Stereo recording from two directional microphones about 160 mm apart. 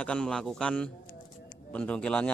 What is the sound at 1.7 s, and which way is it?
Speech, 5° left (ahead or behind).